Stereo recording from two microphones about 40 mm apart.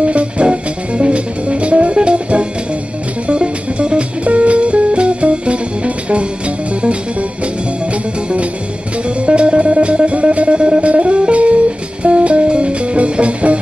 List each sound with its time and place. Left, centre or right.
0.0 s music: right